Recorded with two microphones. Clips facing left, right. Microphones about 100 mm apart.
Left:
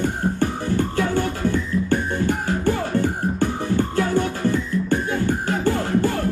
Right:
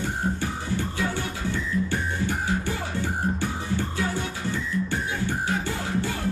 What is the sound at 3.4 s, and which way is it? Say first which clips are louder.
Music: left 7 dB; 50° left (ahead or behind).